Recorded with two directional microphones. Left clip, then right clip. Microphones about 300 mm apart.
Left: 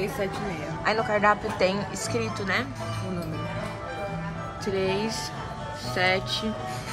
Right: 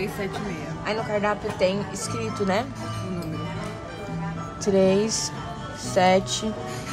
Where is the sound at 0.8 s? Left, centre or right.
Centre.